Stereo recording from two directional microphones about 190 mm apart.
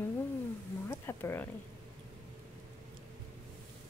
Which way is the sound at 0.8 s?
15° left (ahead or behind).